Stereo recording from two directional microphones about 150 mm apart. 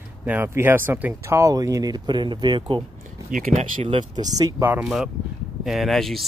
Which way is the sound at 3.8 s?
30° right (ahead or behind).